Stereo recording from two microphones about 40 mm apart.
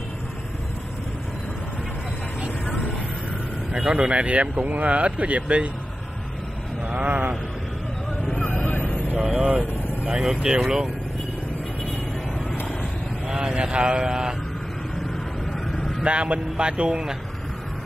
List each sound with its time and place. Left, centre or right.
3.7 s speech: right
6.9 s speech: right
8.4 s vehicle: left
9.1 s speech: right
13.3 s speech: centre
16.0 s speech: right